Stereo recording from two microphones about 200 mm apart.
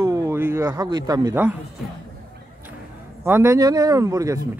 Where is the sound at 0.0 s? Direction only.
15° right (ahead or behind).